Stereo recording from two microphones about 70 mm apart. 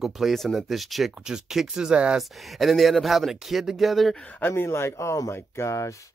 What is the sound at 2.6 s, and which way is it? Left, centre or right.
Speech, centre.